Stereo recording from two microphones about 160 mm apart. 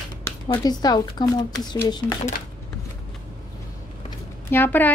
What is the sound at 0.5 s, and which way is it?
Speech, 25° left (ahead or behind).